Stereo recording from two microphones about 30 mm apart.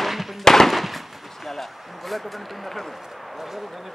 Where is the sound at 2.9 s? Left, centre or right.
Centre.